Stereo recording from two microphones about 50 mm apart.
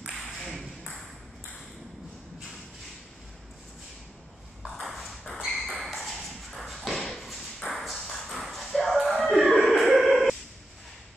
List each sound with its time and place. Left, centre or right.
0.4 s ping: centre
4.7 s ping: centre
5.6 s a sound: centre
7.0 s tap: centre
7.6 s dog: centre